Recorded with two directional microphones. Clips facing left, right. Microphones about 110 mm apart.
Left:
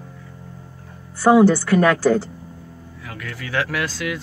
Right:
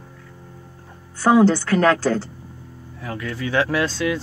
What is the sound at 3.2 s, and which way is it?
Speech, 25° right (ahead or behind).